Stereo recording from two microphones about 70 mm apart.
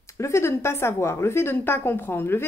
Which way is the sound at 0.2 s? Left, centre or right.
Left.